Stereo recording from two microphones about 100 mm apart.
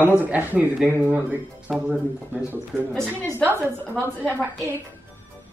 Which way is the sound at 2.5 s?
20° right (ahead or behind).